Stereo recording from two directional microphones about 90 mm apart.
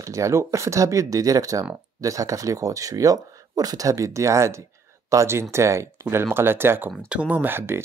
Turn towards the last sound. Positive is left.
turn(degrees=-25)  # may be behind; listen again after turning